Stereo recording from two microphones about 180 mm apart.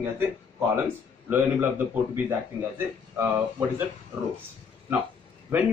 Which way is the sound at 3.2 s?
10° right (ahead or behind).